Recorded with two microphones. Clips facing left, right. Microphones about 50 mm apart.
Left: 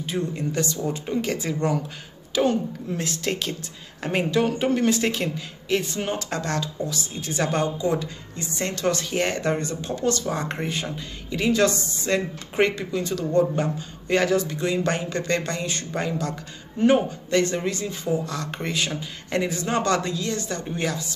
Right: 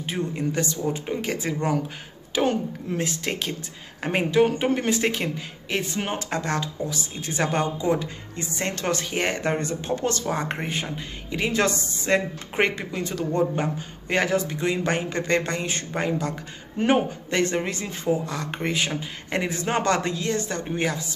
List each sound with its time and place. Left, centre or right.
0.0 s speech: right
2.3 s a woman's voice: right
3.0 s speech: centre; by 10.3 s right
10.3 s speech: right